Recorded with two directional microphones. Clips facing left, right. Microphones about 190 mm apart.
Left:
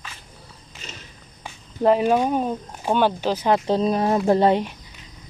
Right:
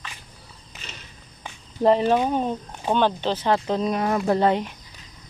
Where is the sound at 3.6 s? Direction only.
30° left (ahead or behind).